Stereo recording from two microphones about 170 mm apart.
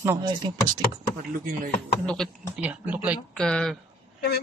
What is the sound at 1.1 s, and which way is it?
Speech, 55° right (ahead or behind).